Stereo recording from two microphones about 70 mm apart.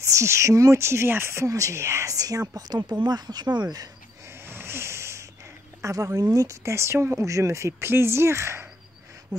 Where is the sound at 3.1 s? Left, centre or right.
Right.